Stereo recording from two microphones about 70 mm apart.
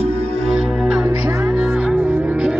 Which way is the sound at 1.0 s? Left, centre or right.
Right.